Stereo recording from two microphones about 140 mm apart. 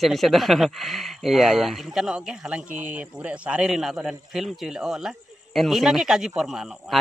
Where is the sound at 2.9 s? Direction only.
5° right (ahead or behind).